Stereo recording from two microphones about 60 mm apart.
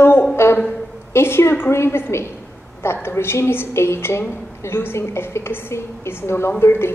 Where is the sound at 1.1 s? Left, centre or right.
Left.